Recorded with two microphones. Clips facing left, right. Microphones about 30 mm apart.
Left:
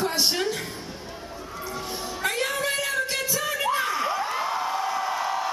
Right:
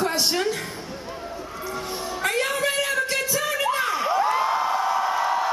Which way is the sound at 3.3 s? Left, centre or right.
Centre.